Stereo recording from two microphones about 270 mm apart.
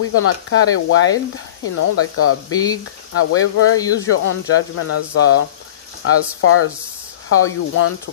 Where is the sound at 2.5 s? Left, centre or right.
Centre.